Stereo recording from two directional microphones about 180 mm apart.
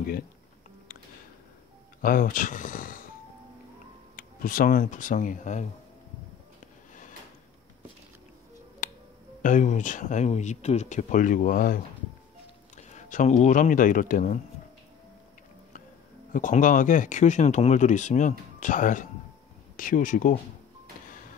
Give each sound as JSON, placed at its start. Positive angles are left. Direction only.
{"t": 2.0, "sound": "speech", "side_deg": 50}
{"t": 4.2, "sound": "speech", "side_deg": 50}
{"t": 6.6, "sound": "a sound", "side_deg": 45}
{"t": 8.8, "sound": "music", "side_deg": 45}
{"t": 9.4, "sound": "speech", "side_deg": 45}
{"t": 16.3, "sound": "speech", "side_deg": 45}